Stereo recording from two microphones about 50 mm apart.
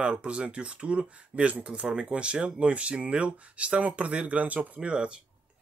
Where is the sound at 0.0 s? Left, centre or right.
Right.